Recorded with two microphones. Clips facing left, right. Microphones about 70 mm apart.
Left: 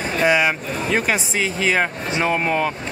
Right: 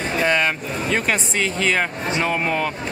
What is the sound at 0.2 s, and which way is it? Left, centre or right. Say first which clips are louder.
Speech: left 3 dB; centre.